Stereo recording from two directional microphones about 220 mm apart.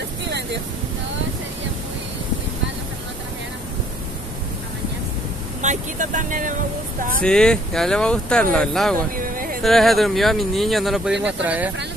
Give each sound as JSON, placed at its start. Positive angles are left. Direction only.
{"t": 5.6, "sound": "speech", "side_deg": -35}
{"t": 7.2, "sound": "speech", "side_deg": 5}
{"t": 9.1, "sound": "music", "side_deg": -40}
{"t": 9.6, "sound": "speech", "side_deg": 0}